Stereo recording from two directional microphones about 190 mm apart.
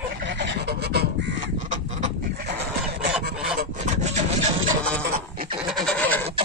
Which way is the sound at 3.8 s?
35° right (ahead or behind).